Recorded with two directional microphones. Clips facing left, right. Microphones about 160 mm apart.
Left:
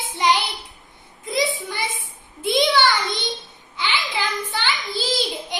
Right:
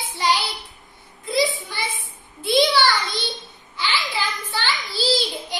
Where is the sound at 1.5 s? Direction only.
20° left (ahead or behind).